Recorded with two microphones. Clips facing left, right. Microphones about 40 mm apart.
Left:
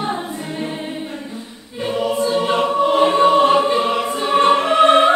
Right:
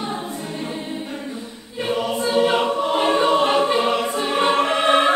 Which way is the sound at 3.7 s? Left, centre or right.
Centre.